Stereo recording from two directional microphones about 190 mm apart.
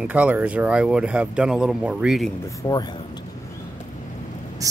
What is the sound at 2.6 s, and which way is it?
Speech, 20° left (ahead or behind).